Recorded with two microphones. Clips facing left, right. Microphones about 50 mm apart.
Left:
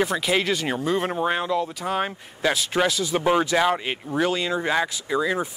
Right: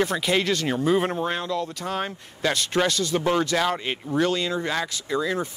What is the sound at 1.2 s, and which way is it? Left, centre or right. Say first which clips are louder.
Speech: left 3 dB; centre.